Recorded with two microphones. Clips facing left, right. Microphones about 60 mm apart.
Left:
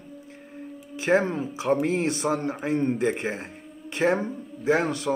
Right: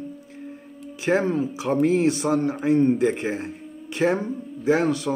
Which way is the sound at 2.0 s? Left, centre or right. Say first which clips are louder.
Right 5 dB; left.